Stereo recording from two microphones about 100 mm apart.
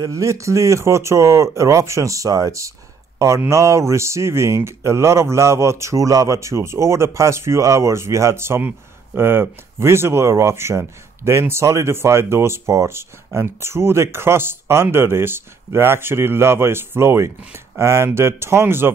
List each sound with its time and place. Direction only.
0.0 s speech: 30° right (ahead or behind)